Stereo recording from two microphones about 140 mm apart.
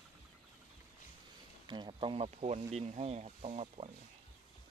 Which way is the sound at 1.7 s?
35° right (ahead or behind).